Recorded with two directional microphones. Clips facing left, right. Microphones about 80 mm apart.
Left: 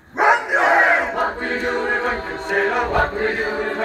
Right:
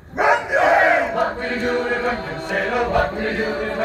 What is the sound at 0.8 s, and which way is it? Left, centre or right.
Battle cry, left.